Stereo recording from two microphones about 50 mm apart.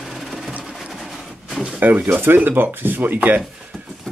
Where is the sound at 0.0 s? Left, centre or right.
Centre.